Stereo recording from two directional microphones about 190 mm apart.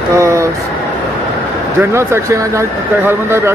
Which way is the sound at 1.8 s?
15° right (ahead or behind).